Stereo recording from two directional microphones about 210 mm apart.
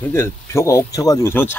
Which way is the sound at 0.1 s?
10° left (ahead or behind).